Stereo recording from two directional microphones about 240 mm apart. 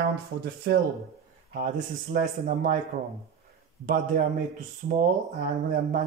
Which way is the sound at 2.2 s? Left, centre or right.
Right.